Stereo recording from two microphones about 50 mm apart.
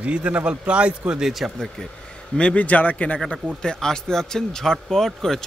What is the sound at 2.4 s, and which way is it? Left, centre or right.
Speech, left.